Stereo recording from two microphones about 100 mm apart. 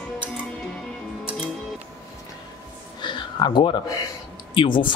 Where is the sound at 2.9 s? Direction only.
50° left (ahead or behind).